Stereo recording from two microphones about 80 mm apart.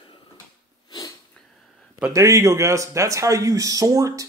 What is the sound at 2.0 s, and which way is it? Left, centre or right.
A man's voice, right.